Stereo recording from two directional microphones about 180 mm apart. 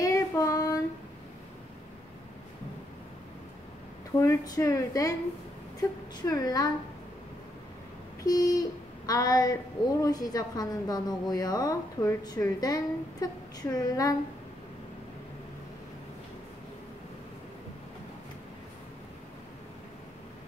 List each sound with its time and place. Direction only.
0.0 s child singing: 20° left (ahead or behind)
4.2 s speech: 15° left (ahead or behind)
8.2 s a sound: 20° left (ahead or behind)
10.0 s a woman's voice: 20° left (ahead or behind)